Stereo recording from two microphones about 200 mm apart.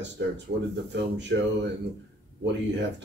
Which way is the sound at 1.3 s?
65° right (ahead or behind).